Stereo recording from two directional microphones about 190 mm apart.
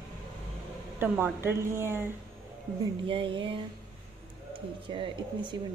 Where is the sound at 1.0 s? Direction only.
10° right (ahead or behind).